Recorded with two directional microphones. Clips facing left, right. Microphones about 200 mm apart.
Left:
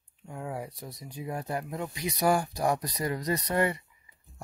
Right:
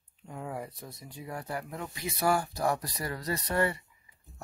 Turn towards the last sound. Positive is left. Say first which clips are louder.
# left 2 dB
turn(degrees=15)  # may be behind; listen again after turning